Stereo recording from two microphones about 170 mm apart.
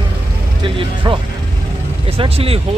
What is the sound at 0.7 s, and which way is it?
Speech, 30° right (ahead or behind).